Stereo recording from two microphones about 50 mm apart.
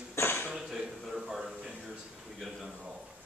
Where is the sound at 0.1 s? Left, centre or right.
Left.